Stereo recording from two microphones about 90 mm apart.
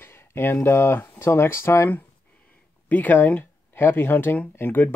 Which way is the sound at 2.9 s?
20° left (ahead or behind).